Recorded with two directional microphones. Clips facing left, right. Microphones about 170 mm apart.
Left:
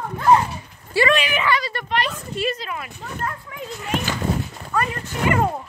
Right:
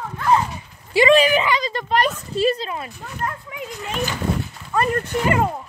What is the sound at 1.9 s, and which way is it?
A woman's voice, 35° right (ahead or behind).